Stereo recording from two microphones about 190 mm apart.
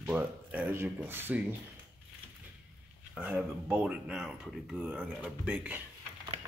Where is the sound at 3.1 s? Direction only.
5° right (ahead or behind).